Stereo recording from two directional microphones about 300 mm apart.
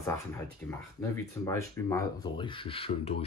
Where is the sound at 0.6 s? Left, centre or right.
Centre.